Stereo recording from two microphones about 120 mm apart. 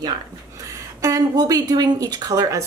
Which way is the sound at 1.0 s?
25° right (ahead or behind).